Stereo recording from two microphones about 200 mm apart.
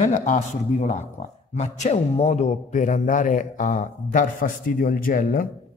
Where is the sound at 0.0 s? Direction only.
35° left (ahead or behind).